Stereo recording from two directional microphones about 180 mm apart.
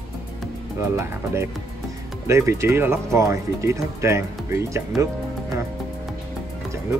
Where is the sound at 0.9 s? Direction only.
15° right (ahead or behind).